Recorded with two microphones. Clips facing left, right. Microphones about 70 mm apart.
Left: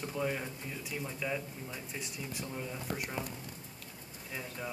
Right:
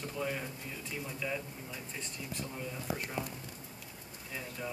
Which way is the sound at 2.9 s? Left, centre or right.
Centre.